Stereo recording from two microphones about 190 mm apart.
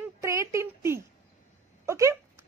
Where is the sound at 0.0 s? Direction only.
15° right (ahead or behind).